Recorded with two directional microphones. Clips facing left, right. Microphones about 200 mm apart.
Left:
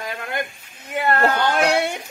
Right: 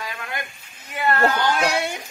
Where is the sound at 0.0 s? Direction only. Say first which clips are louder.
Left 4 dB; 50° left (ahead or behind).